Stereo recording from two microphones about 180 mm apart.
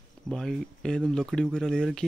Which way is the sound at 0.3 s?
5° left (ahead or behind).